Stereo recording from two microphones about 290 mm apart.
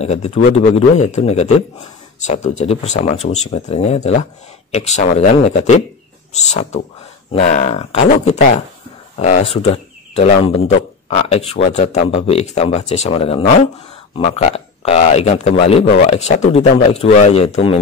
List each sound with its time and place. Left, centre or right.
0.0 s speech: left